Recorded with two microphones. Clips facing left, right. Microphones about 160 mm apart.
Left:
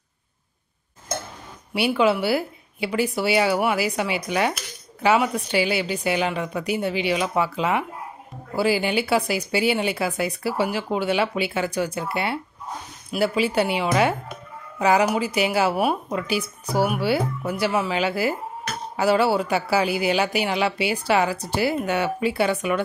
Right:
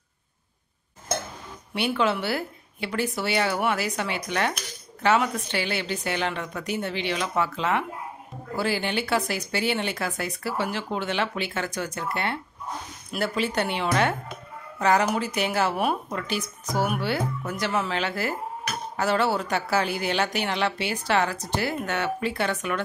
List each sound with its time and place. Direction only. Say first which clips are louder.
1.7 s speech: left 5 dB; 10° left (ahead or behind)